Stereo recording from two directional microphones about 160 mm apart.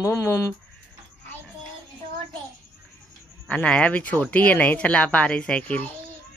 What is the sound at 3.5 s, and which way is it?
Speech, 5° left (ahead or behind).